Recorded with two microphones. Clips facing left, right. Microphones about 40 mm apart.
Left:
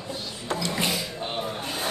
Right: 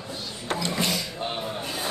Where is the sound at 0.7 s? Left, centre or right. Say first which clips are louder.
Even; centre.